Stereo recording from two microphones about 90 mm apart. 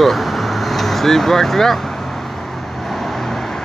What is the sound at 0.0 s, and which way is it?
Vehicle, centre (ahead or behind).